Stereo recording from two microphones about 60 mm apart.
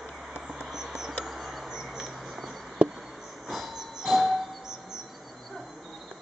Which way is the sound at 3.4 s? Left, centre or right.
Centre.